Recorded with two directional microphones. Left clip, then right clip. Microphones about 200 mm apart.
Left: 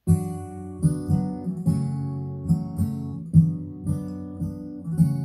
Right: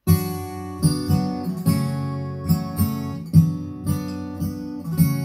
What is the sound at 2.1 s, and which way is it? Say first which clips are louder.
Music: right 3 dB; 35° right (ahead or behind).